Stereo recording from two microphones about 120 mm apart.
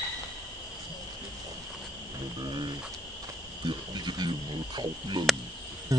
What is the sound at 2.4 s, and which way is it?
Cricket, 40° right (ahead or behind).